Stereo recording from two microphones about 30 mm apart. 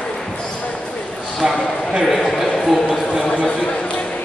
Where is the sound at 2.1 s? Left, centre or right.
Centre.